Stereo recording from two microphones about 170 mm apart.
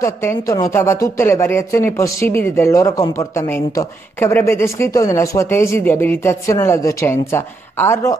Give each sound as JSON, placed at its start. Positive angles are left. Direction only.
{"t": 0.0, "sound": "speech", "side_deg": 15}